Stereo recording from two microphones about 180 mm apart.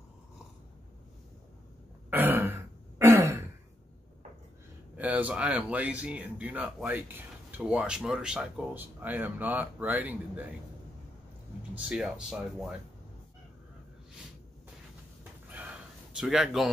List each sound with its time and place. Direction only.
2.0 s throat clearing: 10° right (ahead or behind)
4.9 s speech: 10° right (ahead or behind)
11.7 s speech: 5° right (ahead or behind)
15.4 s a sound: 10° right (ahead or behind)
16.2 s speech: centre (ahead or behind)